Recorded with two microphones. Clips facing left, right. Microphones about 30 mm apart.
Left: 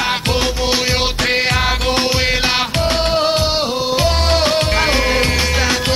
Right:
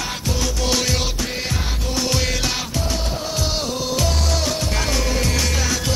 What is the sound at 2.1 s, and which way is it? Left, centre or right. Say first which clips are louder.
Music: left 6 dB; left.